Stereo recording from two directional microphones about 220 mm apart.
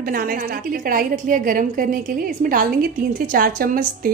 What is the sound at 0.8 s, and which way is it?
A woman's voice, 40° right (ahead or behind).